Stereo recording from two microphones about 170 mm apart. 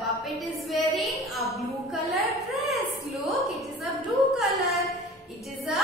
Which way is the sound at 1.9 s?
Centre (ahead or behind).